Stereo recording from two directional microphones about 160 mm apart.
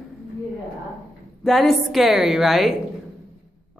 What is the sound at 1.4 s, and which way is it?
A woman's voice, centre (ahead or behind).